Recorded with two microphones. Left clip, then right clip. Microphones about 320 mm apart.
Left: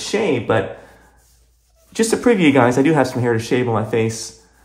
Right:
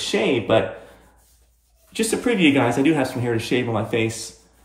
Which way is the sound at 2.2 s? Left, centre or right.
Left.